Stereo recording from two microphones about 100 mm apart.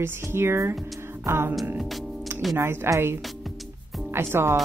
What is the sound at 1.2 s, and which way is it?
Music, 25° right (ahead or behind).